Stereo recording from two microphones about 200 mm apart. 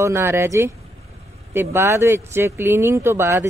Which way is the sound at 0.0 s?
10° right (ahead or behind).